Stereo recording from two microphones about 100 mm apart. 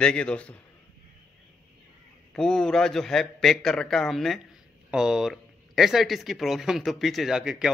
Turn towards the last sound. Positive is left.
turn(degrees=-10)  # may be behind; listen again after turning